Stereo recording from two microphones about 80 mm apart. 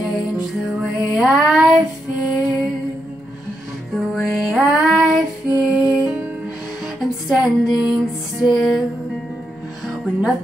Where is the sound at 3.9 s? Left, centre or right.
Centre.